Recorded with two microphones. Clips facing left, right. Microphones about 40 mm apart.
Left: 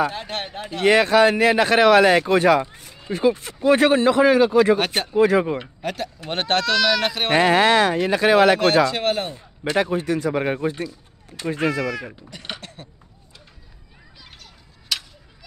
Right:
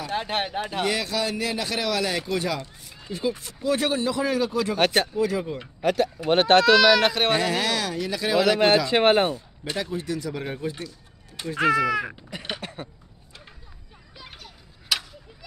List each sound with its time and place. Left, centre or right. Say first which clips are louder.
0.1 s speech: right 3 dB; centre
0.8 s speech: left 15 dB; left
2.6 s speech: left 9 dB; left
3.1 s speech: left 8 dB; left
4.7 s speech: right 2 dB; centre
5.1 s speech: left 8 dB; left
5.8 s speech: right 5 dB; centre
7.3 s speech: left 9 dB; left
8.9 s speech: right 4 dB; right
9.8 s speech: left 8 dB; left
11.8 s speech: right 3 dB; centre
12.4 s a sound: right 1 dB; centre
14.2 s tick-tock: right 3 dB; centre